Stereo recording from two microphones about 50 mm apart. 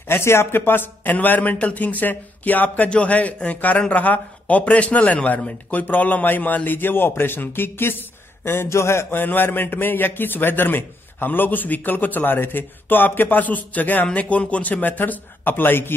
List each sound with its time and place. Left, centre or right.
0.1 s a man's voice: left
8.5 s a man's voice: left
9.1 s a man's voice: left